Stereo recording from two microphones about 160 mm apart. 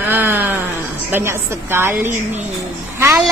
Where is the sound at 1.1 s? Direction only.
15° right (ahead or behind).